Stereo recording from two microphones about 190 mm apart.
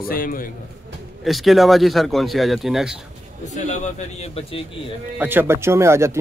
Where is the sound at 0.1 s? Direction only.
50° left (ahead or behind).